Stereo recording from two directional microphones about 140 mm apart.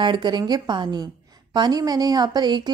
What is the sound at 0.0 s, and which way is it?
A woman's voice, 35° right (ahead or behind).